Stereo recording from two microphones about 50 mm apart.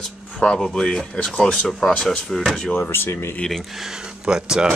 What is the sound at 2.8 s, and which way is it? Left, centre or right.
Speech, left.